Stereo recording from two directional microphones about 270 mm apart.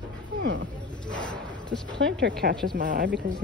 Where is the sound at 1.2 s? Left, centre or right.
Centre.